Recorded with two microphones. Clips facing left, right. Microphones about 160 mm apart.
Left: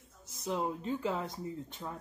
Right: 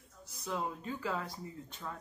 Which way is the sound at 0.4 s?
20° left (ahead or behind).